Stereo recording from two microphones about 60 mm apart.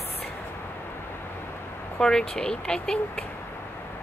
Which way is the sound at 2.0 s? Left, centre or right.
Centre.